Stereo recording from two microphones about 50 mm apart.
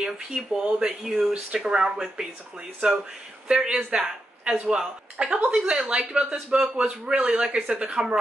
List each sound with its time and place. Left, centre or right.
0.0 s speech: centre
3.4 s a woman's voice: right